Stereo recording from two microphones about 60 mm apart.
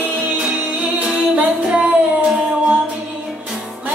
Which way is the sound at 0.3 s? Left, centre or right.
Centre.